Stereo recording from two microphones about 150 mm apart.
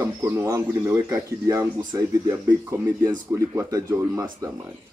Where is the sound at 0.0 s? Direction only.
15° right (ahead or behind).